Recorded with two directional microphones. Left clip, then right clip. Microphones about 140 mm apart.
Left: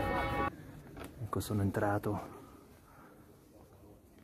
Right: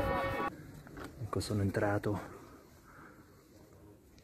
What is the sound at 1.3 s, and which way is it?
Speech, 5° left (ahead or behind).